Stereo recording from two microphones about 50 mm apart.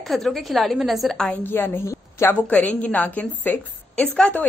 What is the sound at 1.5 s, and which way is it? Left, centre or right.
Speech, left.